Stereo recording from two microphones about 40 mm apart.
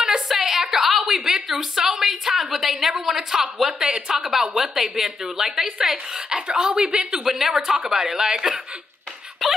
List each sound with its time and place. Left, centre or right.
0.3 s a sound: centre
4.1 s a woman's voice: centre
6.3 s a woman's voice: right
7.3 s a woman's voice: centre